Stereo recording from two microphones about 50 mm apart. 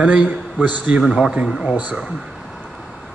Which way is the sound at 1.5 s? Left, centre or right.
Centre.